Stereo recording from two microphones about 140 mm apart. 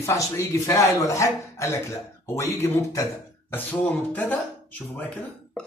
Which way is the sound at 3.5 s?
10° left (ahead or behind).